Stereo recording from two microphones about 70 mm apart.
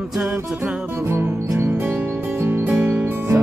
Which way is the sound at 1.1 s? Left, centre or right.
Right.